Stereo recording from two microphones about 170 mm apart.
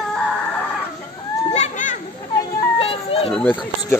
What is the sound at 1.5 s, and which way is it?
Children playing, 45° left (ahead or behind).